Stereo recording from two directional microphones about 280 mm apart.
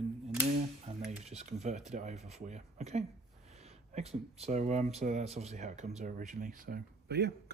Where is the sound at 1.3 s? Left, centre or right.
Right.